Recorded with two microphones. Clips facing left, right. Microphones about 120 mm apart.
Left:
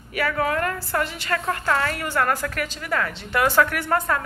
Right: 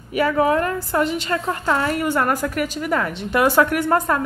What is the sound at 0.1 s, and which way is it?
A woman's voice, 20° right (ahead or behind).